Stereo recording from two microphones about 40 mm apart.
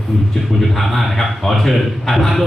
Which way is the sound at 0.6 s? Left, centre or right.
Centre.